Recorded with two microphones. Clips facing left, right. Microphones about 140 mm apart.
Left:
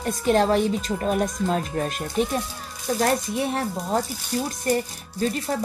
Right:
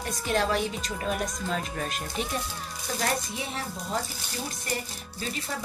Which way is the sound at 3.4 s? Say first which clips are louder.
Left 9 dB; 55° left (ahead or behind).